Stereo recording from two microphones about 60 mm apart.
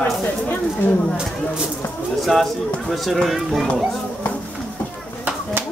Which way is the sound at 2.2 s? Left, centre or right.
Centre.